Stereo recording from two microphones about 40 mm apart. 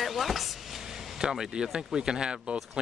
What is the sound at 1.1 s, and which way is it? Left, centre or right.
Speech, centre.